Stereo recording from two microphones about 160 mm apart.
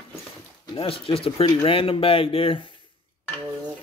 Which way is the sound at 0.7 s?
35° left (ahead or behind).